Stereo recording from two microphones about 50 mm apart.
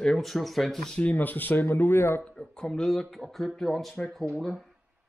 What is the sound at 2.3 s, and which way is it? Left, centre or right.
Speech, centre.